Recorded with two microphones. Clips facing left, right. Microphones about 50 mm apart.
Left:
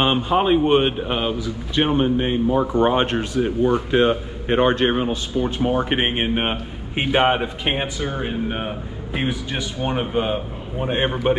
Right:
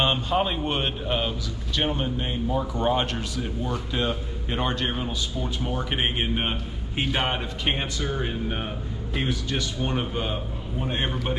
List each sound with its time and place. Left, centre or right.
0.0 s a man's voice: centre